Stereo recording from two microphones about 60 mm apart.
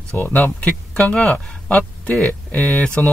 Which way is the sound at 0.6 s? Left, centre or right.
Centre.